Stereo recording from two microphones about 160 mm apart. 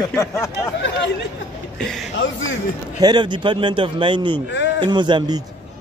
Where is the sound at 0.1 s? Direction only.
20° left (ahead or behind).